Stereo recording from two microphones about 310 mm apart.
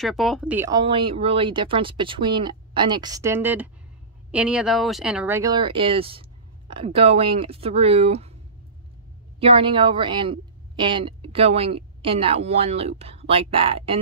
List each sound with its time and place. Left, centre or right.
0.0 s a woman's voice: centre
9.4 s a woman's voice: centre